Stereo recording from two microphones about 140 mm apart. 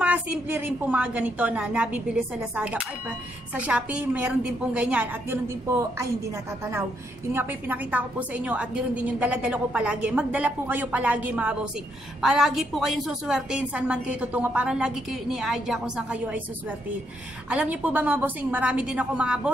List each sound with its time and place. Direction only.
0.0 s a woman's voice: 10° right (ahead or behind)
6.6 s a woman's voice: 20° right (ahead or behind)
17.5 s a woman's voice: 10° right (ahead or behind)